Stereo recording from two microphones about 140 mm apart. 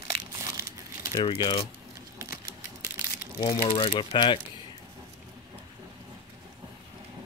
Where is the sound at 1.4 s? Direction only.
30° left (ahead or behind).